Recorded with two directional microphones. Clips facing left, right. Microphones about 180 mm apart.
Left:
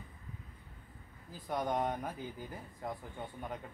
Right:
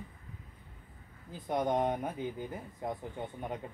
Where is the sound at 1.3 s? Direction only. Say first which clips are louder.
Right 4 dB; 20° right (ahead or behind).